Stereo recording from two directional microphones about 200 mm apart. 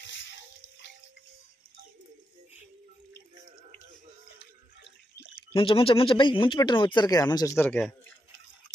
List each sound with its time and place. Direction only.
5.5 s speech: 25° left (ahead or behind); by 7.9 s 10° left (ahead or behind)